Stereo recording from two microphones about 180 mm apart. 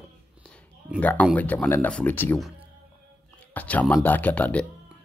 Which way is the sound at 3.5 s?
10° left (ahead or behind).